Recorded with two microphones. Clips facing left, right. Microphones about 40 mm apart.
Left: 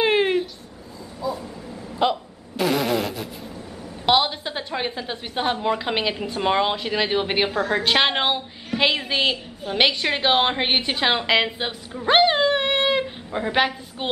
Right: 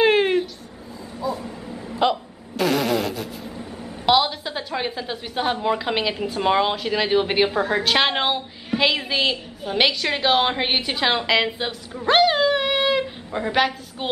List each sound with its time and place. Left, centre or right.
0.0 s a sound: centre
1.2 s bow-wow: centre
2.0 s fart: centre
4.0 s a woman's voice: centre
7.5 s a woman's voice: centre
7.8 s a woman's voice: centre
12.1 s a sound: centre
13.0 s a woman's voice: centre